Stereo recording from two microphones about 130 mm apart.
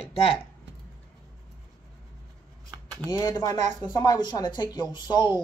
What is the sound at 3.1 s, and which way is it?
Speech, 30° left (ahead or behind).